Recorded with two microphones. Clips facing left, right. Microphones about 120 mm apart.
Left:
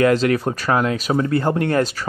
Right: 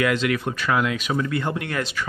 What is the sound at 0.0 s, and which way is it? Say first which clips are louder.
Speech: left 6 dB; 40° left (ahead or behind).